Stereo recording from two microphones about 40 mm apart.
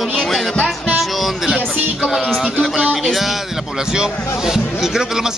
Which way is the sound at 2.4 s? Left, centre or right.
Centre.